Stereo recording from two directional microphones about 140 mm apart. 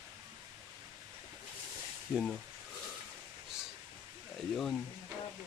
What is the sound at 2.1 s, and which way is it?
Speech, centre (ahead or behind).